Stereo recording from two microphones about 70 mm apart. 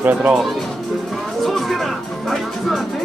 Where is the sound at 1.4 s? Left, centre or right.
Centre.